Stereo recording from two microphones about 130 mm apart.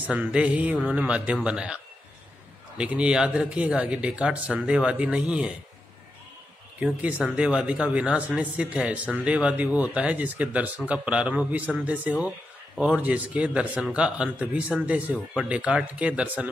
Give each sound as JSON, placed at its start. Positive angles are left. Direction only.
{"t": 0.1, "sound": "speech", "side_deg": -10}
{"t": 2.8, "sound": "speech", "side_deg": -10}
{"t": 6.8, "sound": "speech", "side_deg": -10}